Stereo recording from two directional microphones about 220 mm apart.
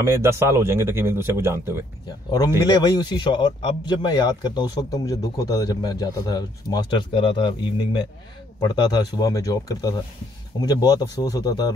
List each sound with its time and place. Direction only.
0.0 s a man's voice: 10° right (ahead or behind)
2.6 s speech: 15° left (ahead or behind)